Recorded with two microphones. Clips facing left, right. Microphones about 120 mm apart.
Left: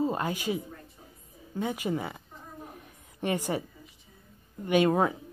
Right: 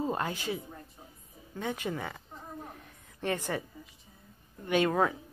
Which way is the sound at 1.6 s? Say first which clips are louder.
Left 4 dB; 10° left (ahead or behind).